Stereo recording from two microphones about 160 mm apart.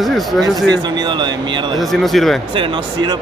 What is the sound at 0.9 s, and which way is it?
Speech, 30° right (ahead or behind).